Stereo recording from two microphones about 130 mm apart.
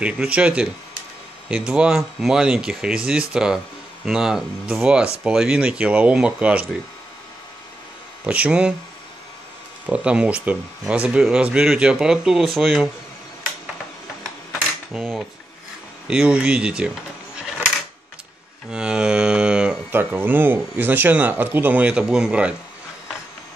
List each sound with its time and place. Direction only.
0.0 s speech: 10° right (ahead or behind)
8.3 s speech: 10° right (ahead or behind)
9.8 s speech: 10° right (ahead or behind)
14.9 s dishes: centre (ahead or behind)
16.1 s speech: 10° right (ahead or behind)
18.7 s cattle: 5° right (ahead or behind)